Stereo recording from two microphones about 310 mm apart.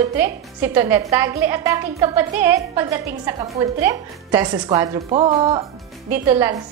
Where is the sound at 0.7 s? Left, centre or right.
Centre.